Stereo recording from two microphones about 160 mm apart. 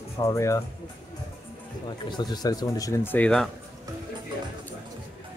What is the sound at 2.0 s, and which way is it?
Speech, 25° left (ahead or behind).